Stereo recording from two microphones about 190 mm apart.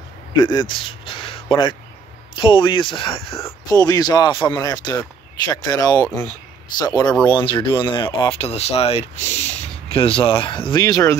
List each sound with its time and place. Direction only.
0.3 s speech: 20° left (ahead or behind)
3.3 s speech: 15° left (ahead or behind)